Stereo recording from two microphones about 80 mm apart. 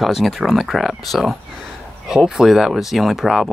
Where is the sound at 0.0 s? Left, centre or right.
Centre.